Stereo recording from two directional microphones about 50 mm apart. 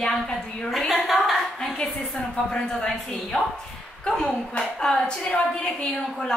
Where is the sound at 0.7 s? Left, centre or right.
Centre.